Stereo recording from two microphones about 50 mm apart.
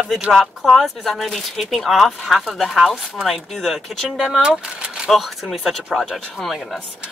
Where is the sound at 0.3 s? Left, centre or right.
Centre.